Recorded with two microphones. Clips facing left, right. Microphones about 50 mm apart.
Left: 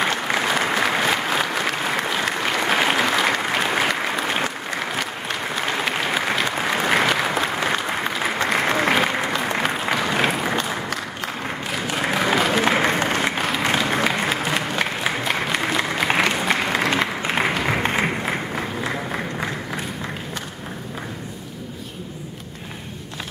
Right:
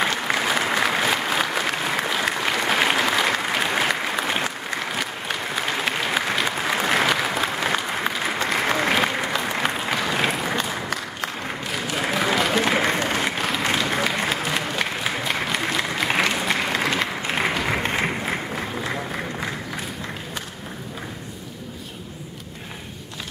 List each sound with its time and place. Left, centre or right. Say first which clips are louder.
0.0 s applause: left 1 dB; centre